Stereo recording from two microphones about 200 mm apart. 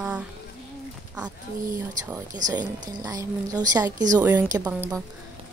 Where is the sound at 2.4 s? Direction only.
20° right (ahead or behind).